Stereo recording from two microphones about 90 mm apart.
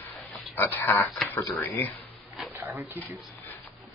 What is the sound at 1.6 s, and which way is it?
Speech, 25° left (ahead or behind).